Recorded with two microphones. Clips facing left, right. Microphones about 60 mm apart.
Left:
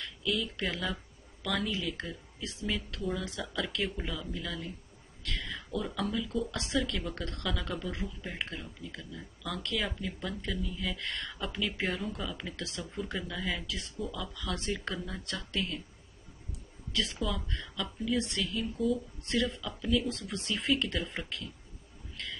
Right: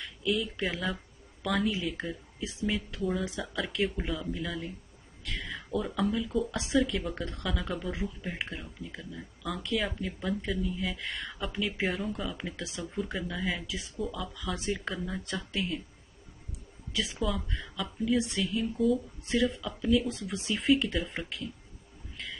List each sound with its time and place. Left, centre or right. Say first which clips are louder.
0.0 s speech: right 3 dB; centre
16.9 s speech: right 2 dB; centre
22.1 s a sound: even; centre